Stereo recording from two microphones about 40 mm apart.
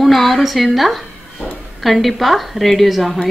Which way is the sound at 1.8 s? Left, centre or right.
Centre.